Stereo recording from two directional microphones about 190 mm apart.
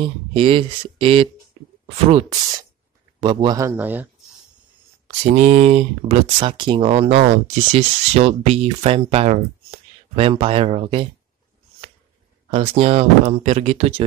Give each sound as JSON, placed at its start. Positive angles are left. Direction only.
{"t": 0.0, "sound": "speech", "side_deg": -30}
{"t": 5.0, "sound": "speech", "side_deg": -35}
{"t": 12.4, "sound": "speech", "side_deg": -30}